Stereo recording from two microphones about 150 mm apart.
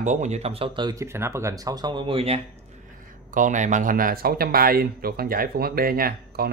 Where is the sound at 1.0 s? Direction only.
15° right (ahead or behind); by 2.4 s 40° right (ahead or behind).